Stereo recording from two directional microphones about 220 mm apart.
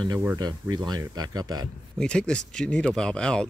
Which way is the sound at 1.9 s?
5° left (ahead or behind).